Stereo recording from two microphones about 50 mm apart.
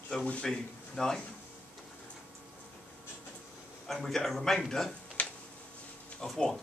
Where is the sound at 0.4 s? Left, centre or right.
Centre.